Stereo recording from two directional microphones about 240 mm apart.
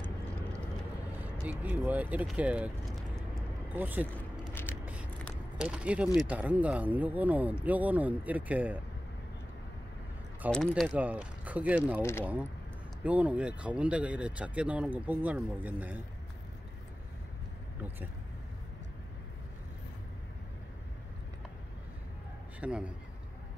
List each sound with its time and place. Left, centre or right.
1.2 s speech: centre
4.2 s a sound: centre
5.6 s speech: centre
10.4 s speech: centre
12.0 s speech: centre
13.0 s speech: centre
22.6 s speech: centre